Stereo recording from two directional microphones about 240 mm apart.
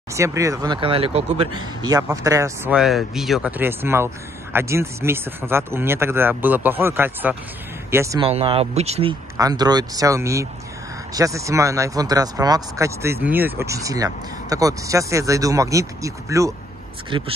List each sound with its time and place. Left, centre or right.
0.1 s speech: centre
8.2 s speech: right